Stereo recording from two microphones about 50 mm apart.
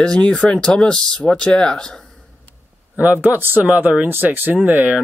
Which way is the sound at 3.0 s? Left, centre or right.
Right.